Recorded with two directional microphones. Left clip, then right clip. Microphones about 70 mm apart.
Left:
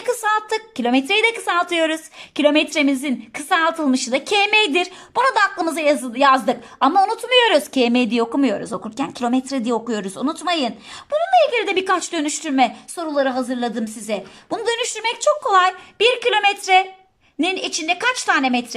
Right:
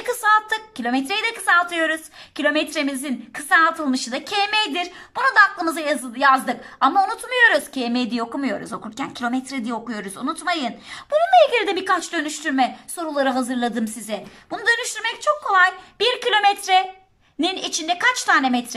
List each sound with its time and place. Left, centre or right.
0.0 s a sound: centre
0.8 s a woman's voice: left
11.1 s a woman's voice: centre
11.7 s a woman's voice: left
12.0 s a woman's voice: left
12.9 s a woman's voice: centre
14.1 s a woman's voice: left
15.1 s speech: left
16.0 s a woman's voice: centre